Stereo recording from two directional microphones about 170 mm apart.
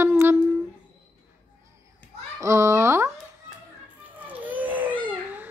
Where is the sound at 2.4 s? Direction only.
15° right (ahead or behind).